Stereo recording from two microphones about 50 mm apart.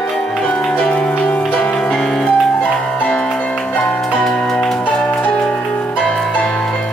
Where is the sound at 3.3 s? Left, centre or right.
Left.